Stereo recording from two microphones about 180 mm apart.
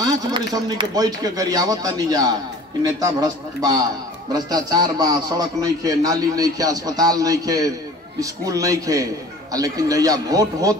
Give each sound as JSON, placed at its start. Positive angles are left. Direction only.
{"t": 0.0, "sound": "a man's voice", "side_deg": -25}